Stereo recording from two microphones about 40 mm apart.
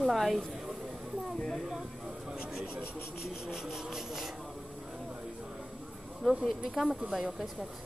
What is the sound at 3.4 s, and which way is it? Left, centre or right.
Speech, centre.